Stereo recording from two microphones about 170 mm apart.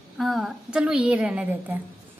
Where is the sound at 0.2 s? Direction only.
Centre (ahead or behind).